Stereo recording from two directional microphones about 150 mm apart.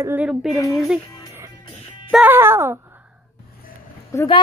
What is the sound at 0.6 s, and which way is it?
Speech, 20° left (ahead or behind).